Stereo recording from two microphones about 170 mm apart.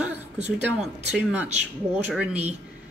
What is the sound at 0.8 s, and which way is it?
Speech, 5° right (ahead or behind).